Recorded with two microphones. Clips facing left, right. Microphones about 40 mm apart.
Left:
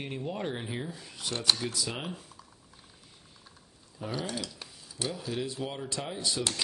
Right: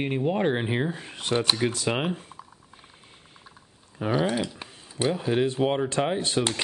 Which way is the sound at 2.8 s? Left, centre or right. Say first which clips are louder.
Right 5 dB; right.